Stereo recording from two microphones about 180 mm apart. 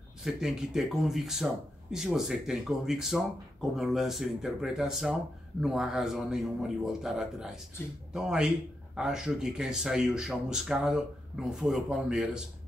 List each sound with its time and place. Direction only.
0.2 s speech: 5° right (ahead or behind)